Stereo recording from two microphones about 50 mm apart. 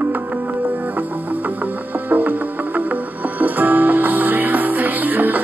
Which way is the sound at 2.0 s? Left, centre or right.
Right.